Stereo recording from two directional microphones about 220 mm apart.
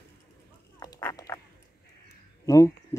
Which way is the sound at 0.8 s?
15° left (ahead or behind).